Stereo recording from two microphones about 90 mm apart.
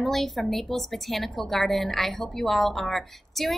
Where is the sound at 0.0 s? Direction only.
Centre (ahead or behind).